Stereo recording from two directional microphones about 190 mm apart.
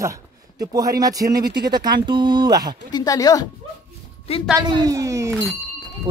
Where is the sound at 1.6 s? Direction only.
55° right (ahead or behind).